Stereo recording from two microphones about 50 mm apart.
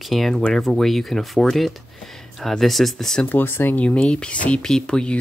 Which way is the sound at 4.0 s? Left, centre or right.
Centre.